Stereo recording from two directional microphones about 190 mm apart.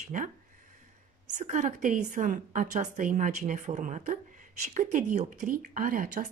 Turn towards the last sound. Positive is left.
turn(degrees=-45)  # may be behind; listen again after turning